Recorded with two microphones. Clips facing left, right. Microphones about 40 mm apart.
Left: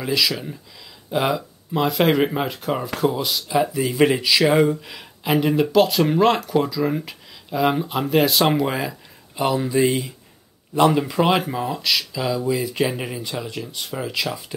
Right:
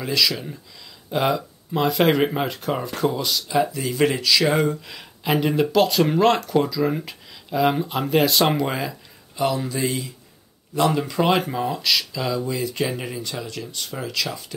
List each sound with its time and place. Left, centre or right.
0.0 s speech: centre
9.4 s speech: centre
10.7 s speech: centre